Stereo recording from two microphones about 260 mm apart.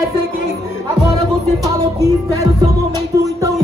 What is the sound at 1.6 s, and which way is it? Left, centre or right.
Music, centre.